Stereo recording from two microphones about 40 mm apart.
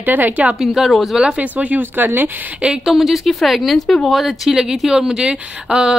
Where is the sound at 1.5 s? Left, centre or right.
Right.